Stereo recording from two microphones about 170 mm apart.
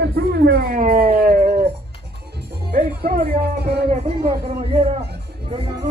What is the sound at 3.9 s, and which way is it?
Speech, 35° right (ahead or behind).